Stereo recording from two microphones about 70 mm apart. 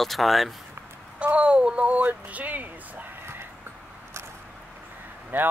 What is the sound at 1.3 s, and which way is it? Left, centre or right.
Speech, centre.